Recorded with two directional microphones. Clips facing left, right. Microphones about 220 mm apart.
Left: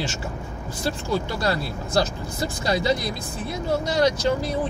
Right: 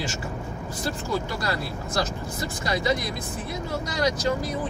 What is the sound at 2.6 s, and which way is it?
Speech, 30° left (ahead or behind).